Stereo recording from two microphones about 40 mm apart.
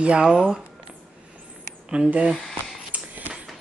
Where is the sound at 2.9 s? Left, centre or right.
Right.